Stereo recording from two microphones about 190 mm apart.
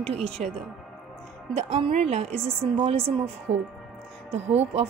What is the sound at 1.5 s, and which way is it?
A woman's voice, 35° right (ahead or behind).